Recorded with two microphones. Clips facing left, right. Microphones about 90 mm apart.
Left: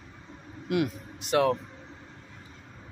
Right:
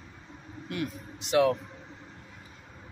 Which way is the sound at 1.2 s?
40° left (ahead or behind).